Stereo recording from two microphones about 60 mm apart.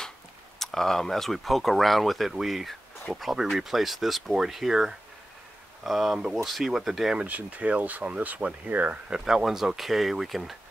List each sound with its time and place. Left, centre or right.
0.6 s speech: centre
7.2 s speech: right
9.1 s speech: centre